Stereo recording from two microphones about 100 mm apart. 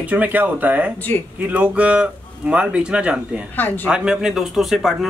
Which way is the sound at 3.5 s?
20° left (ahead or behind).